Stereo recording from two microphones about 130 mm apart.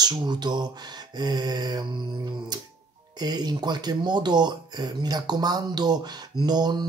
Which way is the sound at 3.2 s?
30° right (ahead or behind).